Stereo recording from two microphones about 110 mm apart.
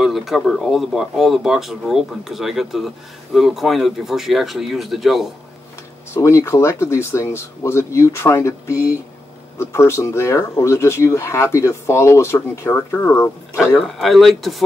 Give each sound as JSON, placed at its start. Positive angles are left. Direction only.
{"t": 0.0, "sound": "speech", "side_deg": 0}
{"t": 6.1, "sound": "speech", "side_deg": 25}
{"t": 13.7, "sound": "speech", "side_deg": 0}